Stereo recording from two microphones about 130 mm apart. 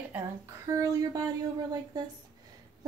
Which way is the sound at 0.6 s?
25° right (ahead or behind).